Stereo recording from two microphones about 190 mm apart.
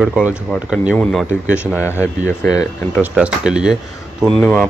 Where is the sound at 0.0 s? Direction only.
5° right (ahead or behind).